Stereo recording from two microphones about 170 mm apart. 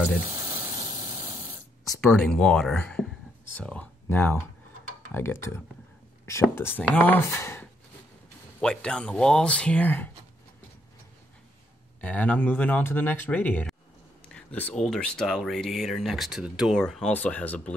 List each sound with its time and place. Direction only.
0.3 s snake: 20° right (ahead or behind)
2.0 s speech: 5° left (ahead or behind)
12.0 s speech: 10° left (ahead or behind)